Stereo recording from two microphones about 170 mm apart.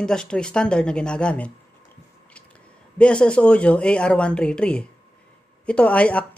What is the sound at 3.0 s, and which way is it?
Speech, 5° left (ahead or behind).